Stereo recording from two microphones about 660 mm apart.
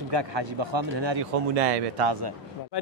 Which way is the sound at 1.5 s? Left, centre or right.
Right.